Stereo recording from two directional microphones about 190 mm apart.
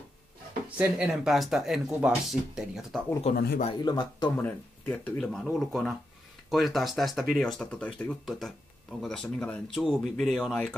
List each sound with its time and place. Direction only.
0.7 s speech: 5° right (ahead or behind)
3.3 s a man's voice: 50° left (ahead or behind)
3.8 s speech: 20° left (ahead or behind)
4.4 s speech: 10° left (ahead or behind)